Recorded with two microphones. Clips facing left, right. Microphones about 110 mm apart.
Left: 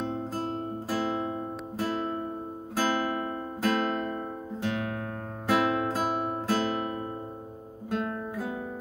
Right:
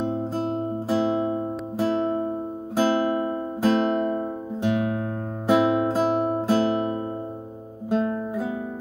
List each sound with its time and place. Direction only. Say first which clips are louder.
0.8 s music: right 7 dB; 20° right (ahead or behind)
7.9 s guitar: right 7 dB; 20° right (ahead or behind)